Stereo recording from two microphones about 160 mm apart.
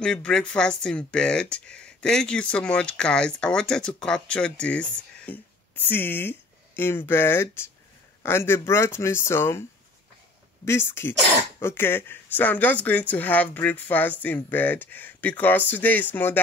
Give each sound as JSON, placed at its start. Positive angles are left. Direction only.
{"t": 0.0, "sound": "speech", "side_deg": 5}